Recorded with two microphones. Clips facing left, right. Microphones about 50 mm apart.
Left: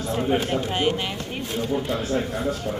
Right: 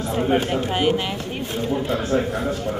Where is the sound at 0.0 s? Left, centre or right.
Centre.